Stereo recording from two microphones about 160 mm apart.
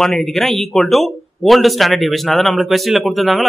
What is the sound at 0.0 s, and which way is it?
Speech, centre (ahead or behind).